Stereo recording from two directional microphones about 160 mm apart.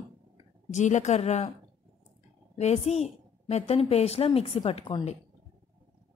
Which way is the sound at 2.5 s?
45° left (ahead or behind).